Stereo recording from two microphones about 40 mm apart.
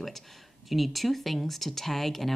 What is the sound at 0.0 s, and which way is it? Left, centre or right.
Speech, centre.